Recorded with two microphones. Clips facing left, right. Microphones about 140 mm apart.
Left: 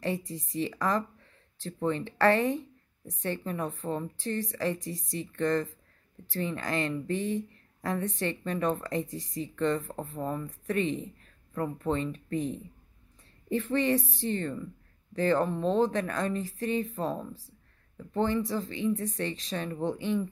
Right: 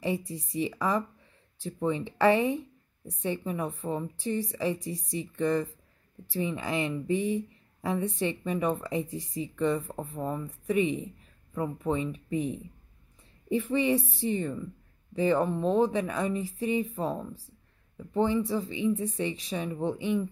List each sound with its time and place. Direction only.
0.6 s speech: 10° right (ahead or behind)
4.7 s speech: 90° left
5.1 s speech: 10° right (ahead or behind)